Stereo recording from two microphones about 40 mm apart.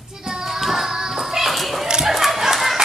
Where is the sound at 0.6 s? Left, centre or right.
Centre.